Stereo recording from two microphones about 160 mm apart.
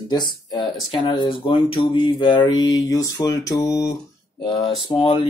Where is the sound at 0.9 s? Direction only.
35° left (ahead or behind).